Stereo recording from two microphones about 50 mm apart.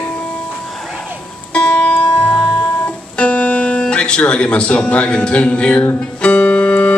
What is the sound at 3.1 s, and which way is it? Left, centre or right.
Speech, left.